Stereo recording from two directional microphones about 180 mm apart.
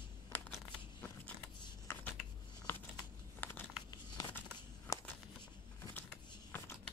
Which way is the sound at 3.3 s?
10° left (ahead or behind).